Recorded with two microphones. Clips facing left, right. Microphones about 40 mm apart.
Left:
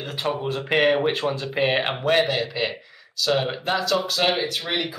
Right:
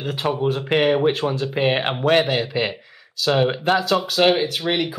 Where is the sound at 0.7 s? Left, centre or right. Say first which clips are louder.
Right 1 dB; centre; by 4.3 s right.